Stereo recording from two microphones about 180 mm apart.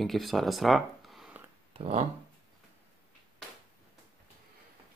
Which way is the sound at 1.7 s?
35° right (ahead or behind).